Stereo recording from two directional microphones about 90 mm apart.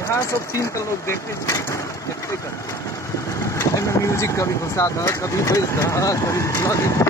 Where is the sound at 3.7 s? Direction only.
35° left (ahead or behind).